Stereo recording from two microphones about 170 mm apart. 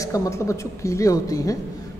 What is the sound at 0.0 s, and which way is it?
A woman's voice, 20° left (ahead or behind).